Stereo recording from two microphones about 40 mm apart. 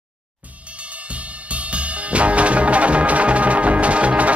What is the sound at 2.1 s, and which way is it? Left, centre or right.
Music, right.